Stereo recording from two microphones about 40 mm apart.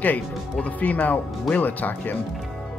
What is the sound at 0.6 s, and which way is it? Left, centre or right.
Speech, left.